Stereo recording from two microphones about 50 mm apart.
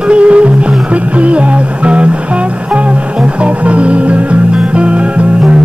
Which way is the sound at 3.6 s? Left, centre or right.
Right.